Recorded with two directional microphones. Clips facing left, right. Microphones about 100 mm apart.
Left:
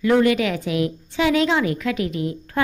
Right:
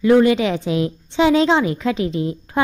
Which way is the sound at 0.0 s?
25° right (ahead or behind).